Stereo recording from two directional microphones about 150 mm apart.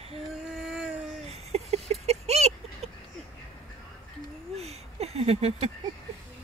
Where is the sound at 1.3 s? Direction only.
45° right (ahead or behind).